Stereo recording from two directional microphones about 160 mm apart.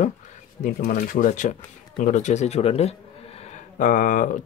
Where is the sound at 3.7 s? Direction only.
55° left (ahead or behind).